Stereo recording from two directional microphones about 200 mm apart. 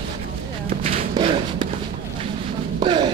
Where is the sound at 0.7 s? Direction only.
30° right (ahead or behind).